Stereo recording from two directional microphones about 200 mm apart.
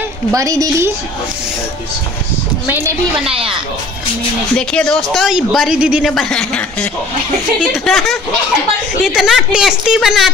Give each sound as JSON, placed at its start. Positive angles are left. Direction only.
{"t": 0.3, "sound": "a woman's voice", "side_deg": -15}
{"t": 2.6, "sound": "a woman's voice", "side_deg": -10}
{"t": 3.3, "sound": "speech", "side_deg": -30}
{"t": 4.6, "sound": "speech", "side_deg": 5}